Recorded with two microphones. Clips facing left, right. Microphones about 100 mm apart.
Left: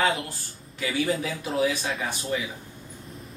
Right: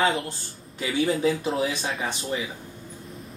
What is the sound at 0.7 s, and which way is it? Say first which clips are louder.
Speech: right 2 dB; 25° right (ahead or behind).